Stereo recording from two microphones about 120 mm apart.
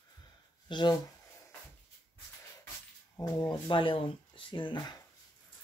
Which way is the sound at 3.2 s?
35° left (ahead or behind).